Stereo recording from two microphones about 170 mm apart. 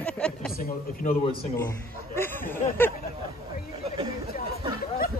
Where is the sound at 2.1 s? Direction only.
10° left (ahead or behind).